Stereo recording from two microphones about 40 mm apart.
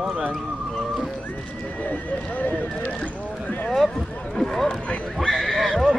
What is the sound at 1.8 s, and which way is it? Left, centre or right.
Speech, left.